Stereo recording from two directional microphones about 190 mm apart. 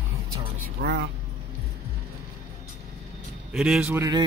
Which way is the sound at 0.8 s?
55° right (ahead or behind).